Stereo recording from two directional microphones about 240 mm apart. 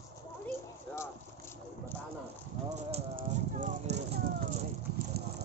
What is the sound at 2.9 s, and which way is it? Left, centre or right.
Horse, right.